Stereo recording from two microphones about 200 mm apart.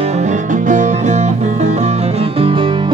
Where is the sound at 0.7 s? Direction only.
35° right (ahead or behind).